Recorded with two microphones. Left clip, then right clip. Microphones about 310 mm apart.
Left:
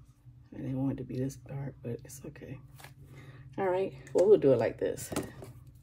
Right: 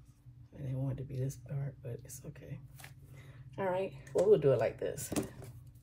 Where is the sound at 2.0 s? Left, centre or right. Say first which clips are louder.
Left 5 dB; left.